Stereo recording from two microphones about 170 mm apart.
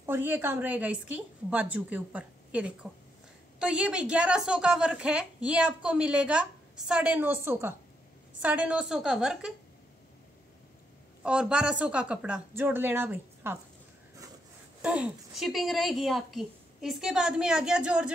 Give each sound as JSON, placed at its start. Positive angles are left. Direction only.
{"t": 0.0, "sound": "a woman's voice", "side_deg": -15}
{"t": 11.2, "sound": "a woman's voice", "side_deg": -5}
{"t": 14.8, "sound": "a woman's voice", "side_deg": -5}